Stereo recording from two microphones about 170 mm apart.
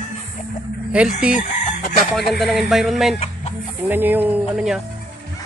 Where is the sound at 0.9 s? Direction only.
5° right (ahead or behind).